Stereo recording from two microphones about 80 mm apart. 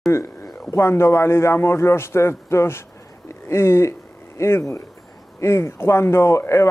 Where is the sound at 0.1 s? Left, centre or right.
Left.